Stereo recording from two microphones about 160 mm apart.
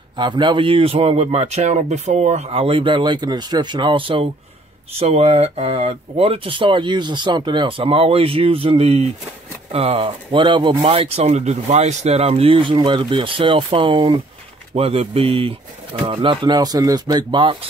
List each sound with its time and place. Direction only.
0.1 s speech: 30° right (ahead or behind)